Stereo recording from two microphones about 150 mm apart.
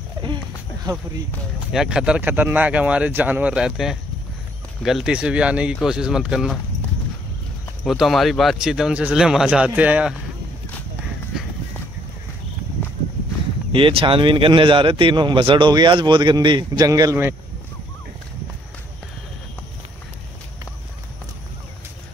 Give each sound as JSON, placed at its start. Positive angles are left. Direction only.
{"t": 1.7, "sound": "speech", "side_deg": -5}
{"t": 7.8, "sound": "speech", "side_deg": 0}
{"t": 13.7, "sound": "a man's voice", "side_deg": -35}